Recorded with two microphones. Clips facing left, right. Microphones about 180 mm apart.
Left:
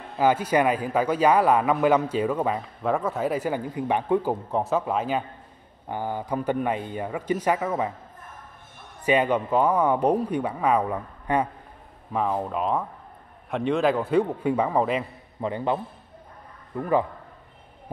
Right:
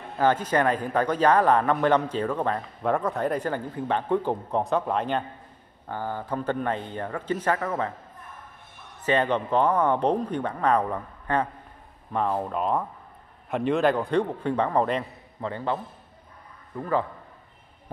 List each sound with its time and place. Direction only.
0.2 s a man's voice: 10° left (ahead or behind)
5.9 s a man's voice: 15° left (ahead or behind)
9.0 s a man's voice: 10° left (ahead or behind)
15.4 s a man's voice: 15° left (ahead or behind)